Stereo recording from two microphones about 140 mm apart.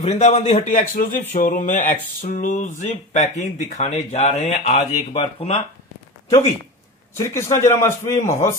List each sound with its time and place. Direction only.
0.1 s speech: 55° left (ahead or behind)
7.2 s a man's voice: 20° left (ahead or behind)